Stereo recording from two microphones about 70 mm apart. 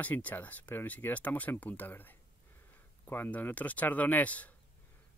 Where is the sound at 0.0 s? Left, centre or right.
Left.